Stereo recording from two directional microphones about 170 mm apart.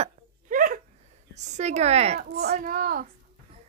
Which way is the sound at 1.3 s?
45° right (ahead or behind).